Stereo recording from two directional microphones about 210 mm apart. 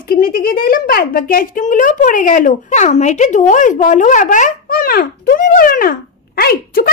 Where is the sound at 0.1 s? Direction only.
45° left (ahead or behind).